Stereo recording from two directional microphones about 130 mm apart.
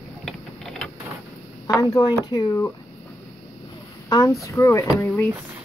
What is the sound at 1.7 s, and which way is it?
Speech, 30° left (ahead or behind).